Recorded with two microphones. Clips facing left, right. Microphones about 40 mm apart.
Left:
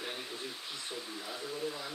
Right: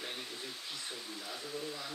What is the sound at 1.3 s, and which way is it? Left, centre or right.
Speech, centre.